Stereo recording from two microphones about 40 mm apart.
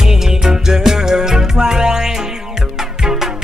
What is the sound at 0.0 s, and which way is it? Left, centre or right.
Music, centre.